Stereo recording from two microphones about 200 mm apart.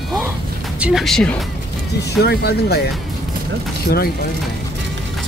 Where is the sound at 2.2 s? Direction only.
55° left (ahead or behind).